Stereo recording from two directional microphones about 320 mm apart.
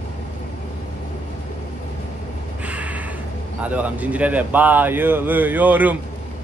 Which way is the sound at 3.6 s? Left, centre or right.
Centre.